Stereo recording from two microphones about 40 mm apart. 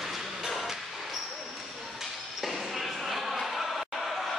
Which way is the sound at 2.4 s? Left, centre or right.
Centre.